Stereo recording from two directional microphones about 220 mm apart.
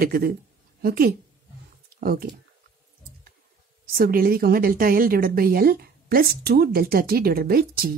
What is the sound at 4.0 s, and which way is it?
Speech, 40° right (ahead or behind).